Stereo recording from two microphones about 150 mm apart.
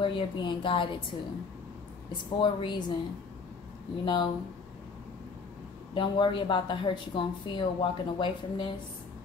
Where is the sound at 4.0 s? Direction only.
30° left (ahead or behind).